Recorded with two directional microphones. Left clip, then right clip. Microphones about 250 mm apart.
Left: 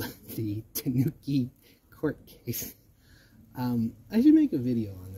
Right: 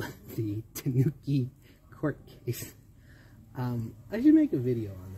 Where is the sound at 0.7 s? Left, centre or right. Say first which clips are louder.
Left 2 dB; left.